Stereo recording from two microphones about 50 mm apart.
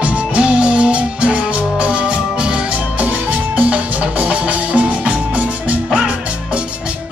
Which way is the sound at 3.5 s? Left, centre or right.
Right.